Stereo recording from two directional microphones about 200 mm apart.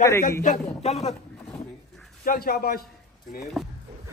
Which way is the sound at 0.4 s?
35° left (ahead or behind).